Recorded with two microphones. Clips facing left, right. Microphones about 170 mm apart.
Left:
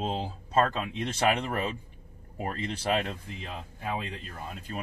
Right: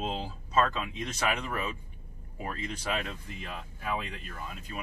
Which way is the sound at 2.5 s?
35° left (ahead or behind).